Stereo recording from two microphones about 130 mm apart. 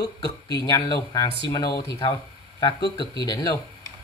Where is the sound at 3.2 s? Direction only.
30° left (ahead or behind).